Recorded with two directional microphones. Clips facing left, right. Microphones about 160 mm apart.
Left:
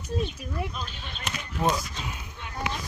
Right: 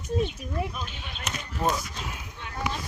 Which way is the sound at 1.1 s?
Centre (ahead or behind).